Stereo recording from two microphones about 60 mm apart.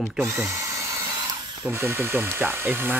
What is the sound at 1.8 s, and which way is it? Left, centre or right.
Speech, right.